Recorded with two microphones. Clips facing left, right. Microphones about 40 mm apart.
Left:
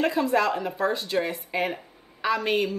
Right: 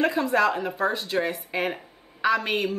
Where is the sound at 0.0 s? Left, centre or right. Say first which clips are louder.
Right 1 dB; centre.